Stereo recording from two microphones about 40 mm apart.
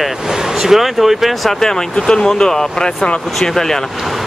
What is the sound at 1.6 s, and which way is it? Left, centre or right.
Speech, centre.